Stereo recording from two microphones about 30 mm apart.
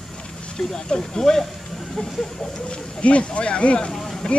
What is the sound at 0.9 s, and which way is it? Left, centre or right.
Speech, centre.